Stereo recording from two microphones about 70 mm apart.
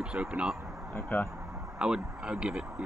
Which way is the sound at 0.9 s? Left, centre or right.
Left.